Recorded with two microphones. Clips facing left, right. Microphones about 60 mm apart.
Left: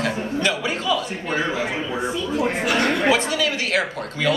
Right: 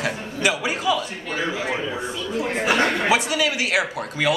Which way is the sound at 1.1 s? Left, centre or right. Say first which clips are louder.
Left 3 dB; left.